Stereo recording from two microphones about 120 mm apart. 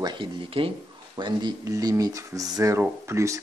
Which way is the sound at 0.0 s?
40° right (ahead or behind).